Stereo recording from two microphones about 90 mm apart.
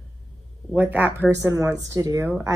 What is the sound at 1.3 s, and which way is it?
Speech, 35° right (ahead or behind).